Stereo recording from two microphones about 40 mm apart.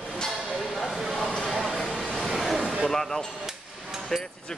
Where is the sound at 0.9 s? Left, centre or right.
Centre.